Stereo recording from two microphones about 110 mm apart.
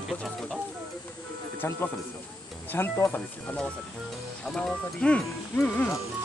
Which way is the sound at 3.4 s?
10° left (ahead or behind).